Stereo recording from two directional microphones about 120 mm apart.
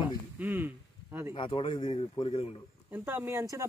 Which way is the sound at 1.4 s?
45° left (ahead or behind).